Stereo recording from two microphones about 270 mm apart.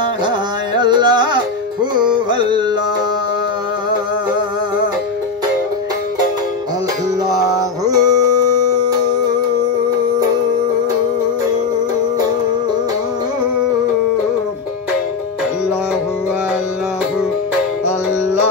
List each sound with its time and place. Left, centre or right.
0.7 s carnatic music: centre
7.8 s music: centre